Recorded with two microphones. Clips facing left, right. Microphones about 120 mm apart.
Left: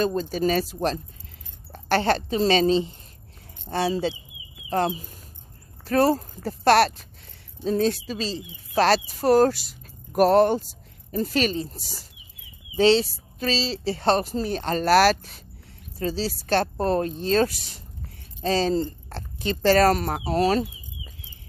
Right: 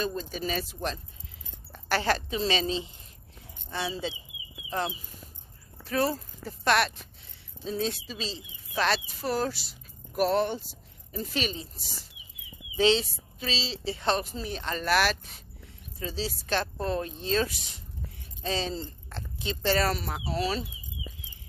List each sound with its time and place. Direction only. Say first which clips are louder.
0.0 s speech: left 9 dB; 40° left (ahead or behind)
7.6 s a woman's voice: left 8 dB; 50° left (ahead or behind)
12.7 s a woman's voice: left 6 dB; 35° left (ahead or behind)